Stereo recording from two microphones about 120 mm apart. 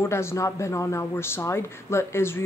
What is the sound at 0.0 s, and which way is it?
Speech, 25° left (ahead or behind).